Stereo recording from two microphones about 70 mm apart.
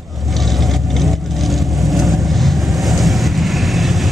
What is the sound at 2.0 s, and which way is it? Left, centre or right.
Vehicle, centre.